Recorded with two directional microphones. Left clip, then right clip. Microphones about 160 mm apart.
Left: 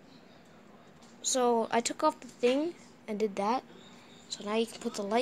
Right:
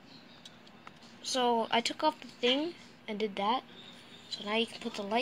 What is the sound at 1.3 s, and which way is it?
Speech, 15° left (ahead or behind).